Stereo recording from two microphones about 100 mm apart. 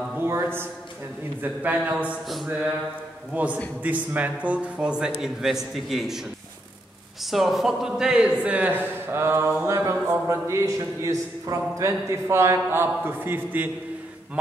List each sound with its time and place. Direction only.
0.2 s a sound: 25° right (ahead or behind)
1.4 s a man's voice: 15° right (ahead or behind)
3.3 s a man's voice: 15° right (ahead or behind)
7.2 s a man's voice: centre (ahead or behind); by 13.7 s 20° right (ahead or behind)